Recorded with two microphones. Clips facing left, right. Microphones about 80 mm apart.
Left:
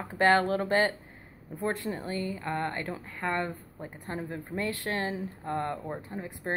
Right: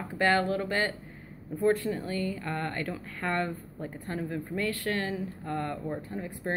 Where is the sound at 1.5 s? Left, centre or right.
Left.